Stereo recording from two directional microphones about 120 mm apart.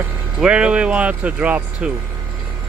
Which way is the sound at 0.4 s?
10° right (ahead or behind).